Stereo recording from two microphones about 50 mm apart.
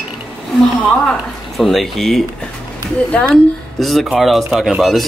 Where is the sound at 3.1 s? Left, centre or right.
Left.